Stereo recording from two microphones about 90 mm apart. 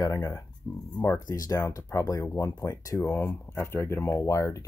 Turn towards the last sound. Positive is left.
turn(degrees=35)  # may be behind; listen again after turning